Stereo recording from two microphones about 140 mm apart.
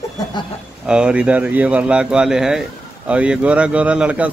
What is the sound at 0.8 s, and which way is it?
A man's voice, 5° right (ahead or behind).